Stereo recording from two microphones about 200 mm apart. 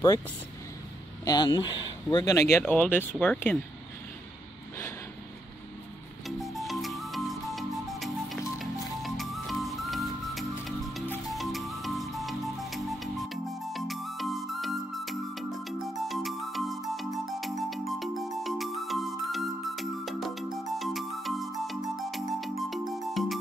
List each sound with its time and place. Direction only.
1.2 s speech: 20° left (ahead or behind)
2.6 s speech: 5° left (ahead or behind)
6.2 s music: centre (ahead or behind)